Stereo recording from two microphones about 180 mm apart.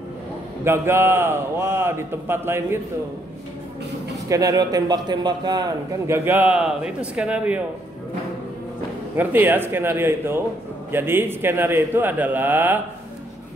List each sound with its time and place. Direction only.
0.7 s a man's voice: 15° right (ahead or behind)
4.3 s a man's voice: 20° right (ahead or behind)
9.1 s a man's voice: 10° right (ahead or behind)